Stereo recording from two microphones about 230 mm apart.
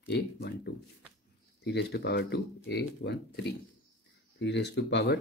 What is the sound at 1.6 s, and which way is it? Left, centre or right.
Speech, left.